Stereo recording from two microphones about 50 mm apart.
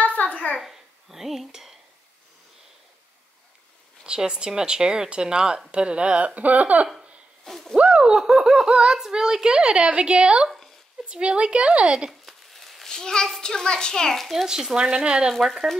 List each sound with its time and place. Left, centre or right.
0.0 s a sound: left
0.6 s a child's voice: centre
4.0 s a child's voice: centre
7.4 s speech: centre
7.7 s a child's voice: centre
12.1 s a sound: centre
12.9 s a child's voice: centre
14.3 s a child's voice: centre
15.3 s speech: centre